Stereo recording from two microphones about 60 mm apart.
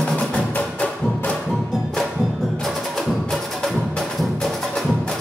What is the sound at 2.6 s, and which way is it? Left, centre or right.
Wood block, centre.